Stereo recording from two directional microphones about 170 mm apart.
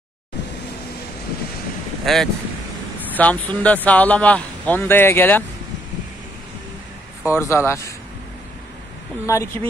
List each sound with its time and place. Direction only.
2.1 s speech: centre (ahead or behind)
7.2 s speech: 15° left (ahead or behind)
9.2 s speech: 15° left (ahead or behind)